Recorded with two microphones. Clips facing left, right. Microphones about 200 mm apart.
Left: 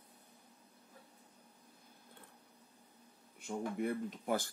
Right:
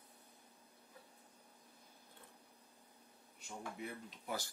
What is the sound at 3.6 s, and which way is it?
Speech, 50° left (ahead or behind).